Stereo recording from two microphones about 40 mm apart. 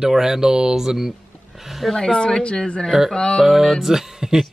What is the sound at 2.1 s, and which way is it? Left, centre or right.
Speech, left.